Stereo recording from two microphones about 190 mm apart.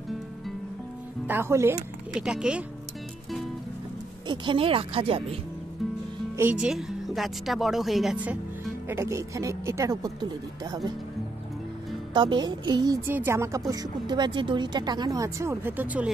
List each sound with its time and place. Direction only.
1.2 s a woman's voice: 10° right (ahead or behind)
4.3 s a woman's voice: 25° right (ahead or behind)
6.3 s a woman's voice: 10° right (ahead or behind)
12.1 s a woman's voice: 25° right (ahead or behind); by 16.1 s 10° right (ahead or behind)